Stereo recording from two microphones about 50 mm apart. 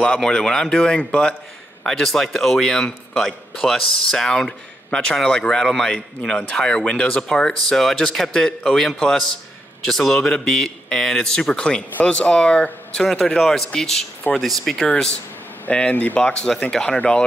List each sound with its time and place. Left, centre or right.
0.0 s a man's voice: centre
12.9 s a man's voice: centre
15.9 s speech: left
16.2 s a man's voice: centre